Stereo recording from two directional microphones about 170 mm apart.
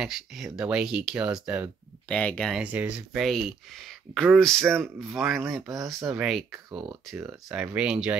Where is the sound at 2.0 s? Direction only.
5° left (ahead or behind).